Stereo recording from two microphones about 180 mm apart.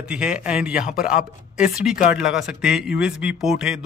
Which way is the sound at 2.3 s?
5° right (ahead or behind).